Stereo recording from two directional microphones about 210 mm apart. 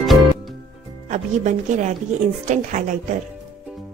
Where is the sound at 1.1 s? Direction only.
35° right (ahead or behind).